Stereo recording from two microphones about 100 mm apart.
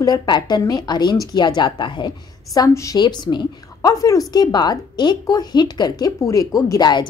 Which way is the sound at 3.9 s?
35° left (ahead or behind).